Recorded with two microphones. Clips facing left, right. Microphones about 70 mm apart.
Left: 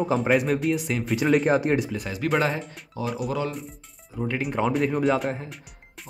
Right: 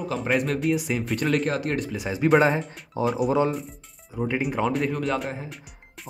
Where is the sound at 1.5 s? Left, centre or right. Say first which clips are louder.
Left 5 dB; centre.